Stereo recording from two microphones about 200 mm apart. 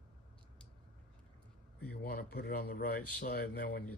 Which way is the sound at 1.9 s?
50° left (ahead or behind).